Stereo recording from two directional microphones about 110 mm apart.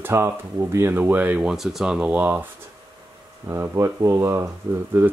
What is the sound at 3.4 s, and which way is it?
Speech, 25° right (ahead or behind).